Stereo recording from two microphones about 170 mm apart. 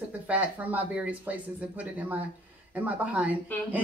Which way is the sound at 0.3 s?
10° right (ahead or behind).